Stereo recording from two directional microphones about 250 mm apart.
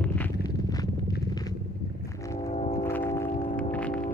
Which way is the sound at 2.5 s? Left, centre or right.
Left.